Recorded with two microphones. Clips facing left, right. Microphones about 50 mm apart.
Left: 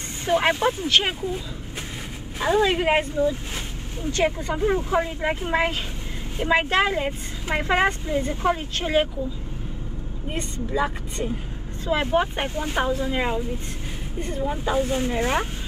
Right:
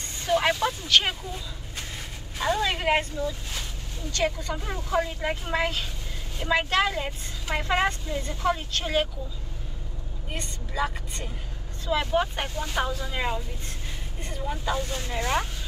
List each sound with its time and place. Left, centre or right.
0.2 s speech: left
10.3 s speech: centre
11.8 s speech: left
13.1 s speech: centre
14.4 s speech: centre